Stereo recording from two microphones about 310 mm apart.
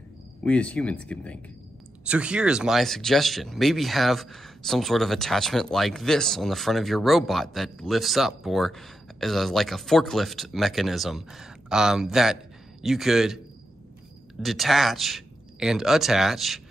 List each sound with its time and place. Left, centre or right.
0.5 s speech: centre
14.4 s speech: centre